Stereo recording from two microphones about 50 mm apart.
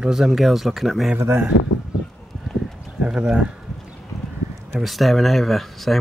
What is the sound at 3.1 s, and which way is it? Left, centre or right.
Speech, centre.